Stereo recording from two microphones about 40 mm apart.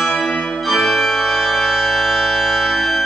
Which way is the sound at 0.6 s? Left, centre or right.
Centre.